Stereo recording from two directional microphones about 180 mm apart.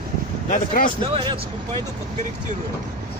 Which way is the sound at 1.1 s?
30° right (ahead or behind).